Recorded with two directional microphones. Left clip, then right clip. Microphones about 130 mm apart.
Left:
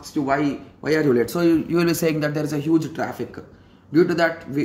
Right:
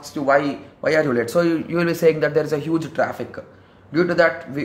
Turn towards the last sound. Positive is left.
turn(degrees=20)  # may be behind; listen again after turning